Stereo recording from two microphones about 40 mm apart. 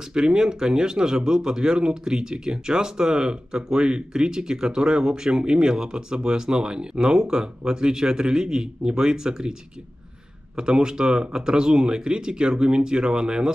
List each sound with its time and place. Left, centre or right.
0.1 s speech: centre